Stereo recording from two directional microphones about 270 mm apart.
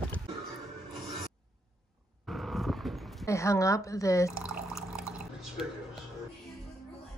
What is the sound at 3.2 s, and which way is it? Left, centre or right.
Speech, centre.